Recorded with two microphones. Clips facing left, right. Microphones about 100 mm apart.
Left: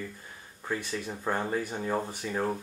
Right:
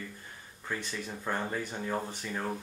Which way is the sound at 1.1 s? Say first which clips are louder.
Left 4 dB; 15° left (ahead or behind).